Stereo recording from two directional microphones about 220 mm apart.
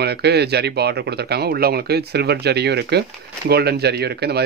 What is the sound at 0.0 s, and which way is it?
Speech, 50° right (ahead or behind).